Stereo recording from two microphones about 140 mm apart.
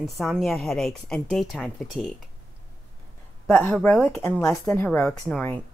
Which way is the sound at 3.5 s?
10° left (ahead or behind).